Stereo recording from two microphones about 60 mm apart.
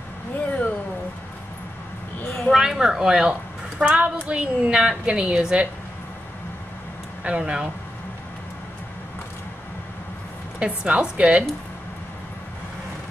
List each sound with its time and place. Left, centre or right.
2.5 s a sound: centre
3.8 s a woman's voice: centre
7.2 s a woman's voice: centre
10.6 s a woman's voice: centre